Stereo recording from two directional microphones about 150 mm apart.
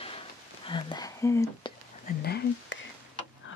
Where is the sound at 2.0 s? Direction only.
90° left.